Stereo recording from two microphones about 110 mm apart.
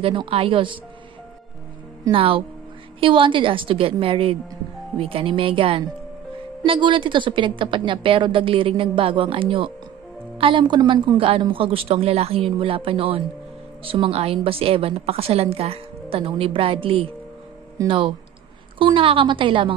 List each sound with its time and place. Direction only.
0.0 s a woman's voice: 55° right (ahead or behind)
2.0 s a woman's voice: 55° right (ahead or behind)
11.1 s a woman's voice: 55° right (ahead or behind)